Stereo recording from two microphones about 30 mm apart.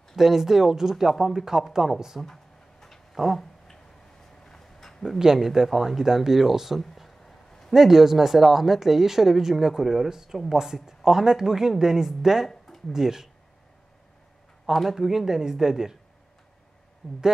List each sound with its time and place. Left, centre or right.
0.1 s speech: centre
2.2 s a sound: centre
4.5 s a sound: centre
5.4 s speech: centre
6.8 s a sound: centre
7.7 s speech: centre
14.7 s speech: centre
15.0 s speech: centre
17.0 s speech: centre